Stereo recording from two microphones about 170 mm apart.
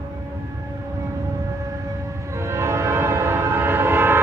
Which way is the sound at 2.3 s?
15° right (ahead or behind).